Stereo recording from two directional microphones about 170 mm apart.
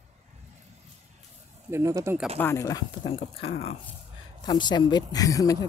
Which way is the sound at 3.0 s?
35° left (ahead or behind).